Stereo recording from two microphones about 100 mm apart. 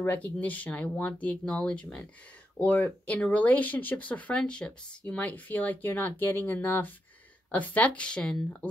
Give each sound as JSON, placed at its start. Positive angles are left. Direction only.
{"t": 0.0, "sound": "speech", "side_deg": 15}